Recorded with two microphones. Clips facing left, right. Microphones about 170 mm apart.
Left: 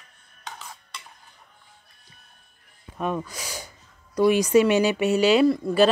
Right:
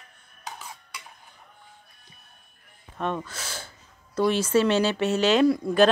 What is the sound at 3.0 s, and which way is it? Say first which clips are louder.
Speech: left 2 dB; 5° left (ahead or behind).